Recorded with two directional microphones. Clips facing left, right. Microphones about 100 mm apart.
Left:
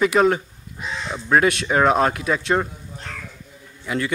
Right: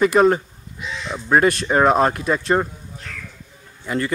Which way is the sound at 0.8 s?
40° left (ahead or behind).